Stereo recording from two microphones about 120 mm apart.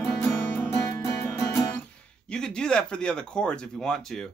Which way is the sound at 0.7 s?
30° left (ahead or behind).